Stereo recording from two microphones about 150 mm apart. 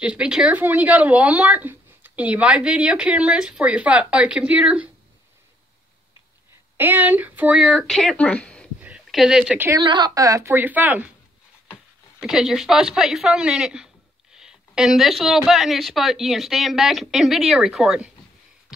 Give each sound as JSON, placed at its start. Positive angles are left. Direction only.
{"t": 0.0, "sound": "speech", "side_deg": -5}
{"t": 6.8, "sound": "speech", "side_deg": -15}
{"t": 8.8, "sound": "a sound", "side_deg": -5}
{"t": 9.8, "sound": "a woman's voice", "side_deg": -30}
{"t": 12.2, "sound": "speech", "side_deg": -5}